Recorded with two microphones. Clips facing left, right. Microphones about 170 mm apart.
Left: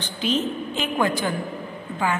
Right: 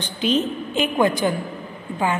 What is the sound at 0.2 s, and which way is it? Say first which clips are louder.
A woman's voice: right 3 dB; 15° right (ahead or behind).